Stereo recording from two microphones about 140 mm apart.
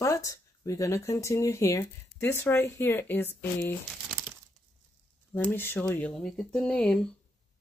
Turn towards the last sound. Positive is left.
turn(degrees=5)  # may be behind; listen again after turning